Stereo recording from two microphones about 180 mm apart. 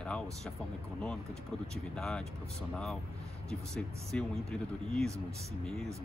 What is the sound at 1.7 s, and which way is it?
Speech, 5° left (ahead or behind).